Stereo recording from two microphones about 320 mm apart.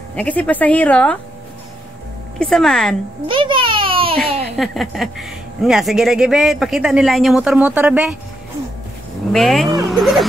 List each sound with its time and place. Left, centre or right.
0.1 s a man's voice: centre
2.3 s a man's voice: centre
3.3 s a sound: centre
4.6 s a man's voice: centre
9.3 s a man's voice: centre